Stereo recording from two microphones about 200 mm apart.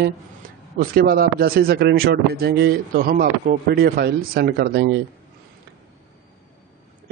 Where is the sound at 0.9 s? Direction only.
50° right (ahead or behind).